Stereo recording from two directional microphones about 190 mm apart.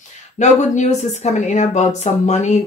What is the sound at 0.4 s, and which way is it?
Speech, 35° left (ahead or behind).